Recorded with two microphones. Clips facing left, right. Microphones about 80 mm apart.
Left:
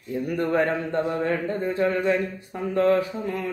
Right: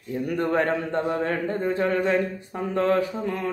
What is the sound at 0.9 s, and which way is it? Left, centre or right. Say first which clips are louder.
Speech: even; right.